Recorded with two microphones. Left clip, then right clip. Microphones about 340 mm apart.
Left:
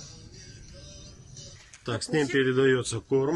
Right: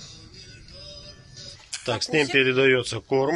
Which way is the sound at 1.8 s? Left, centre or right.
Centre.